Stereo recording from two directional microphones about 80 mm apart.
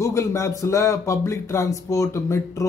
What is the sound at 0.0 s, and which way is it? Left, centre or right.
Speech, left.